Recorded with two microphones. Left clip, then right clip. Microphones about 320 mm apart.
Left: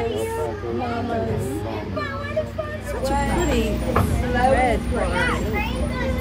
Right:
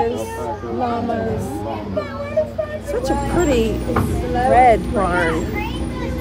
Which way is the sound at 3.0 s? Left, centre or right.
Centre.